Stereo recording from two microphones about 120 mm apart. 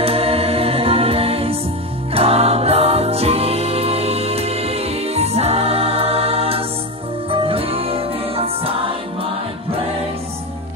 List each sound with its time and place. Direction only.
0.0 s music: 55° right (ahead or behind)